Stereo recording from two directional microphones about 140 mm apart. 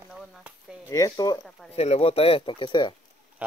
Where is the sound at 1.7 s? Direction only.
45° left (ahead or behind).